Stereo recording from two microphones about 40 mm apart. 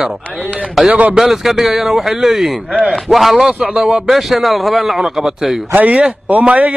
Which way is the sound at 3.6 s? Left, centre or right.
Right.